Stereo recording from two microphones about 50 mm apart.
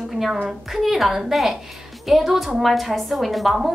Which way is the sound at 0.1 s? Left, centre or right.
Centre.